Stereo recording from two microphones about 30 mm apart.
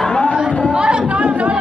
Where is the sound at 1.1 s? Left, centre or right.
Right.